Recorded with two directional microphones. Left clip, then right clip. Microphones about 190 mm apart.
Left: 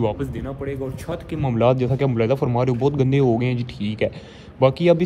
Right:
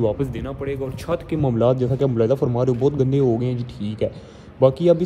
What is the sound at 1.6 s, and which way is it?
A man's voice, 10° right (ahead or behind).